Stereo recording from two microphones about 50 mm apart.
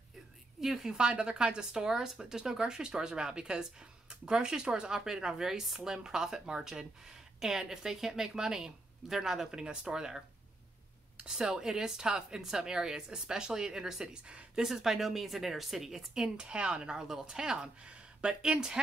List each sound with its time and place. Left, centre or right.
0.6 s speech: centre
16.3 s speech: centre